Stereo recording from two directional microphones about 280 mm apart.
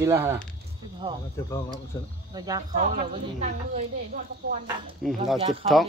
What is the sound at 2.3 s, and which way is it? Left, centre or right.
Speech, centre.